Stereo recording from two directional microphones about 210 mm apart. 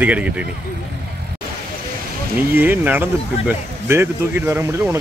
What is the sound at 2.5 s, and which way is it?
Speech, 10° right (ahead or behind).